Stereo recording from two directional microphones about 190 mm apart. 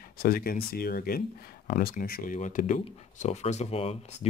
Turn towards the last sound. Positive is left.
turn(degrees=35)  # may be behind; listen again after turning